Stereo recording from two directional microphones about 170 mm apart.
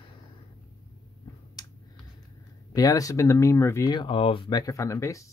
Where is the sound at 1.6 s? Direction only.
25° left (ahead or behind).